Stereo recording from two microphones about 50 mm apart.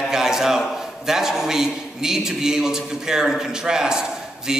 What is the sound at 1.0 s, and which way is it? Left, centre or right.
A man's voice, centre.